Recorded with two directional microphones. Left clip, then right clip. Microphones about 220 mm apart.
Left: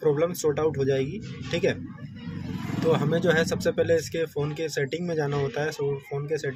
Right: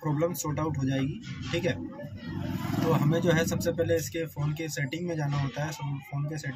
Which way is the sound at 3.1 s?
30° left (ahead or behind).